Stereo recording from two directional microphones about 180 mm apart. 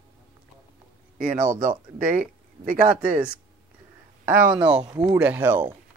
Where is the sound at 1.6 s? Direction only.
50° right (ahead or behind).